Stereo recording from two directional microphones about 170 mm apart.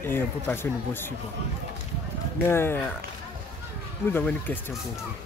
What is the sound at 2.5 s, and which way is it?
Speech, 15° left (ahead or behind).